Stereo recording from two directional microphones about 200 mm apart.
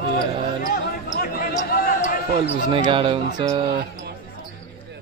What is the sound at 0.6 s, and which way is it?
Basketball bounce, 45° left (ahead or behind).